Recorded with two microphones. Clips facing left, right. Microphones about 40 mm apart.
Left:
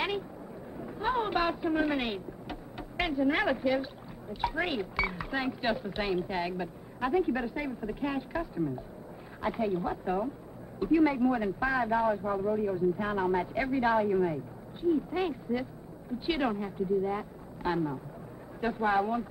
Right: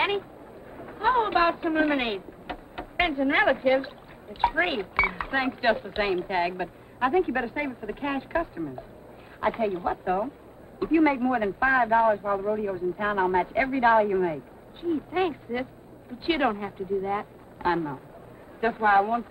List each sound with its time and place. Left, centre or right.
0.7 s a man's voice: right